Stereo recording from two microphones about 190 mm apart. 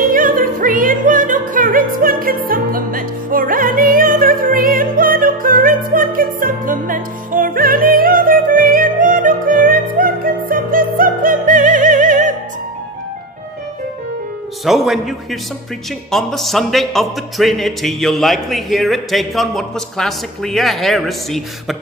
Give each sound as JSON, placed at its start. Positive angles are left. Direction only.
{"t": 0.0, "sound": "music", "side_deg": -45}
{"t": 14.6, "sound": "a man's voice", "side_deg": 0}